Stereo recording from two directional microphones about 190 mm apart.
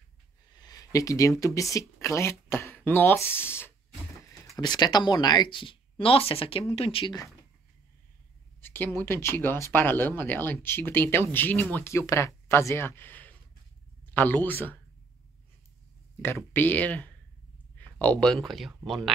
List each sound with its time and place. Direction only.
0.5 s speech: 20° left (ahead or behind)
8.5 s speech: 10° left (ahead or behind)
16.2 s speech: 10° left (ahead or behind)